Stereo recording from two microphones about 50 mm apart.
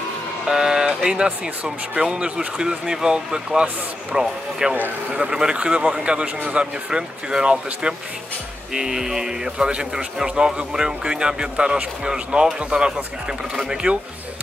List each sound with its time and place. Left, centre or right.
0.5 s speech: centre
4.7 s speech: right
5.2 s speech: centre